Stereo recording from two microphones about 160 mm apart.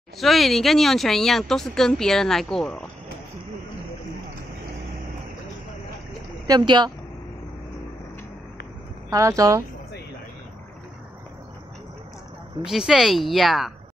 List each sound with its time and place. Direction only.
0.2 s speech: centre (ahead or behind)
6.4 s speech: 25° right (ahead or behind)
9.1 s speech: 20° right (ahead or behind)
12.6 s speech: 5° right (ahead or behind)